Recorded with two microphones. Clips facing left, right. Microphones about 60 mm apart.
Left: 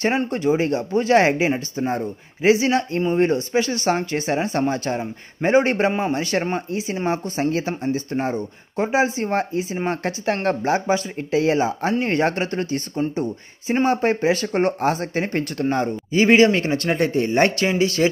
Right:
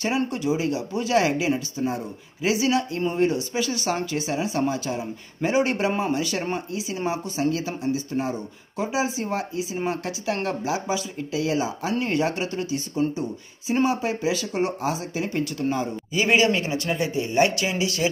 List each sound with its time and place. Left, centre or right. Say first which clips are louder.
0.3 s speech: left 5 dB; left
16.1 s speech: left 6 dB; left